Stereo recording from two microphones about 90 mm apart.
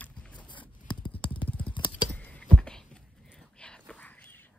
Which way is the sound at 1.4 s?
15° left (ahead or behind).